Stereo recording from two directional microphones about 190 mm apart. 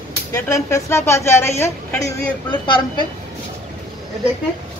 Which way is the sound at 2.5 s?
25° left (ahead or behind).